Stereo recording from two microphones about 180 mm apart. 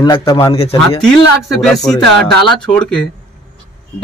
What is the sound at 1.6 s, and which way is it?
Speech, 5° left (ahead or behind).